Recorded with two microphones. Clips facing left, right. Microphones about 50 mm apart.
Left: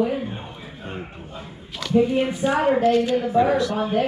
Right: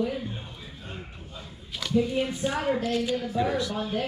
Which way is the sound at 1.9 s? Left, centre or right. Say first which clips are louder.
Left 6 dB; left.